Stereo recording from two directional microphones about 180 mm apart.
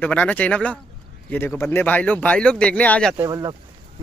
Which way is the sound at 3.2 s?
20° right (ahead or behind).